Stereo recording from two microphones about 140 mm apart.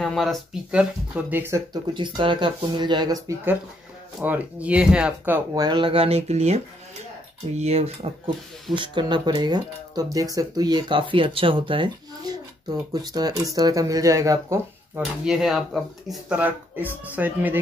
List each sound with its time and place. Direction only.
0.0 s speech: centre (ahead or behind); by 1.6 s 15° right (ahead or behind)
1.7 s speech: 35° right (ahead or behind)
4.2 s speech: 10° right (ahead or behind)
5.5 s speech: 30° right (ahead or behind); by 8.1 s 45° right (ahead or behind)
8.7 s speech: 35° right (ahead or behind)
15.2 s speech: 5° right (ahead or behind)